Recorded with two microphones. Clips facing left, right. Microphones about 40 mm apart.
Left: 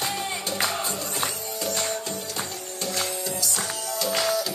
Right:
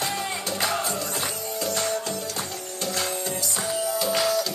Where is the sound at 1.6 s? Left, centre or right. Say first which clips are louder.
Right 1 dB; right.